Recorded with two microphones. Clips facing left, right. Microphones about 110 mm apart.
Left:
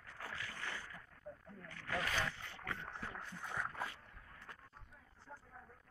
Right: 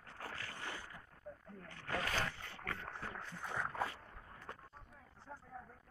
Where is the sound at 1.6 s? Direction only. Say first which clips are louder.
Even; 30° right (ahead or behind).